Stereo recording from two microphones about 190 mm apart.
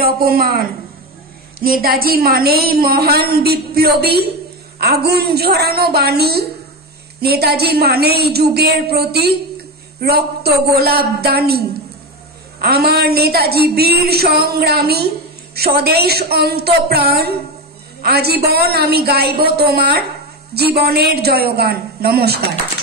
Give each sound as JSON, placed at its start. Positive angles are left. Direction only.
{"t": 0.0, "sound": "a woman's voice", "side_deg": -50}